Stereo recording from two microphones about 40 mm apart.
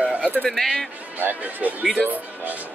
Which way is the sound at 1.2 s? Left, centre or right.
Right.